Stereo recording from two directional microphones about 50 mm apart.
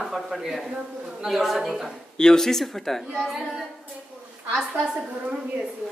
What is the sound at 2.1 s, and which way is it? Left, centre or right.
Speech, centre.